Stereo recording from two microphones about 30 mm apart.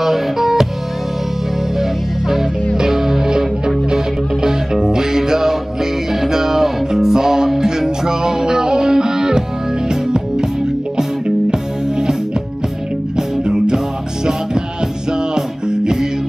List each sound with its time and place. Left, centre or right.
0.0 s music: centre
1.8 s music: centre; by 11.6 s right
13.1 s music: right
15.3 s music: right